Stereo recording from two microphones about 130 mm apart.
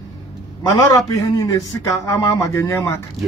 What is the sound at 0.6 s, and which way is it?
A man's voice, 25° left (ahead or behind).